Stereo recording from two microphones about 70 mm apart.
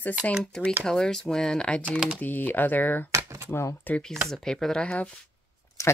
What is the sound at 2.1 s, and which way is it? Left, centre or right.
Speech, left.